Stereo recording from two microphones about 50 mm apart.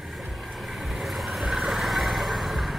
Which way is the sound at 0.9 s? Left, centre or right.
Centre.